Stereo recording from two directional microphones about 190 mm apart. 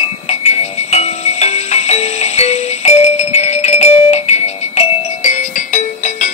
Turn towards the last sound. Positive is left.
turn(degrees=35)  # may be behind; listen again after turning